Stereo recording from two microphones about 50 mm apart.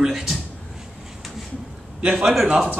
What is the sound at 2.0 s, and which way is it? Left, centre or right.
Speech, right.